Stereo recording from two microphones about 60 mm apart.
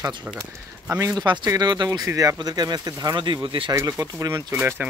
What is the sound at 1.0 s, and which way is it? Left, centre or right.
Speech, right.